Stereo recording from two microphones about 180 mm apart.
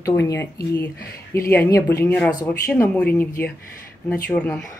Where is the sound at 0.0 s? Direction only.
15° left (ahead or behind).